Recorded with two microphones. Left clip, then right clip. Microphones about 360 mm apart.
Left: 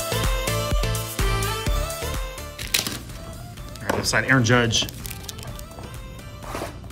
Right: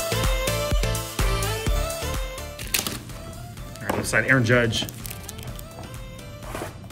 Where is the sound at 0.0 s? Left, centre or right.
Centre.